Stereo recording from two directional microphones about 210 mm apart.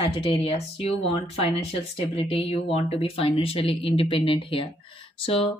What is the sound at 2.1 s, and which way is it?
Speech, 25° left (ahead or behind).